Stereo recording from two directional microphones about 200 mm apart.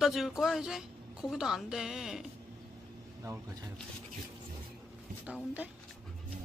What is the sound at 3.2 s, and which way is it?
Speech, 15° right (ahead or behind).